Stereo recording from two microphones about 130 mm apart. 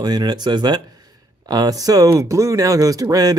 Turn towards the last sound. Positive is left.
turn(degrees=-30)  # may be behind; listen again after turning